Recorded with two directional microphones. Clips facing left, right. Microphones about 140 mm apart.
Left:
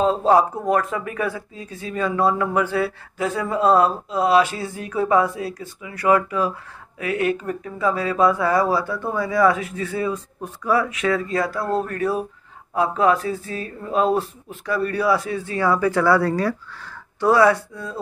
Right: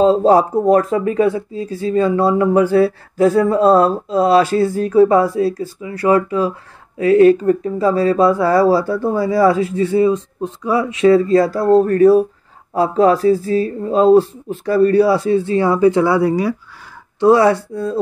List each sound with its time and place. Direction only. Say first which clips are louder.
0.0 s speech: right 5 dB; 35° right (ahead or behind); by 16.5 s 15° right (ahead or behind)
17.2 s speech: right 5 dB; 25° right (ahead or behind)